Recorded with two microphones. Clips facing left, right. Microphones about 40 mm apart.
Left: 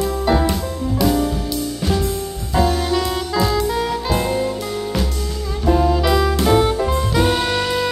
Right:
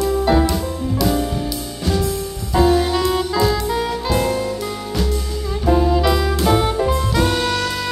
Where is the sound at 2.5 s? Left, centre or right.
Centre.